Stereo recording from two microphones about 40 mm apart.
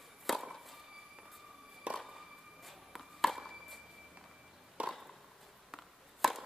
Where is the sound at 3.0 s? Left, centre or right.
Centre.